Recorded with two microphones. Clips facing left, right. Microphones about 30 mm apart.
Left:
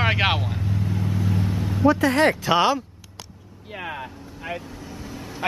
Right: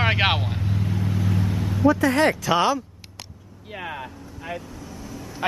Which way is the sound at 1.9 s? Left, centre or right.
Left.